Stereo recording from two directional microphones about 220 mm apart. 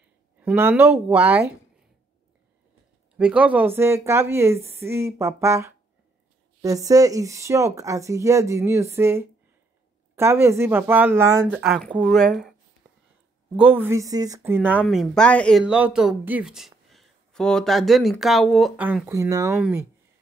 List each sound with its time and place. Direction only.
0.4 s speech: 10° right (ahead or behind)
3.2 s speech: 5° right (ahead or behind)
11.5 s speech: centre (ahead or behind)
13.6 s speech: 10° right (ahead or behind)